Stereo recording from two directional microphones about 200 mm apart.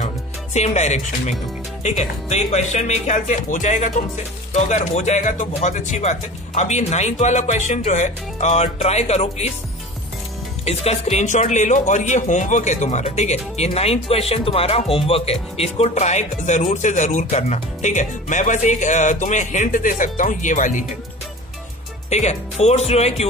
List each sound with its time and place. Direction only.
0.0 s music: 35° left (ahead or behind)
1.8 s speech: 35° left (ahead or behind)
10.6 s speech: 30° left (ahead or behind)
22.1 s speech: 35° left (ahead or behind)